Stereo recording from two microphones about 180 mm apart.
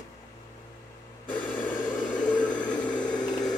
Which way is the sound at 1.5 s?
45° left (ahead or behind).